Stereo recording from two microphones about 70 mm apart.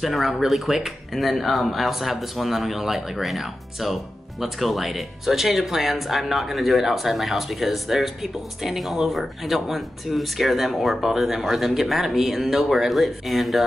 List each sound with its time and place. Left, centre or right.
0.0 s speech: centre